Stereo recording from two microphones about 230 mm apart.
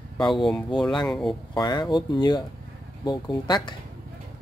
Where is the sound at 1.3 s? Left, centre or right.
Centre.